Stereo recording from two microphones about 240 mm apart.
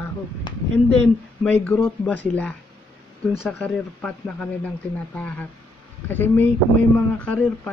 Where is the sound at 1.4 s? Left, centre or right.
Centre.